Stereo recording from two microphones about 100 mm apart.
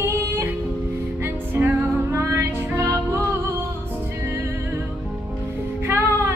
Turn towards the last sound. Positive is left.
turn(degrees=-25)  # may be behind; listen again after turning